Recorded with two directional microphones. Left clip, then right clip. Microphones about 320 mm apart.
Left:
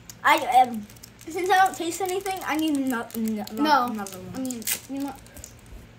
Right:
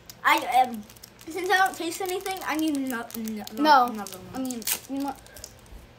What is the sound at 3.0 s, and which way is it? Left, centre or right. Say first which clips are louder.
Speech: left 5 dB; centre.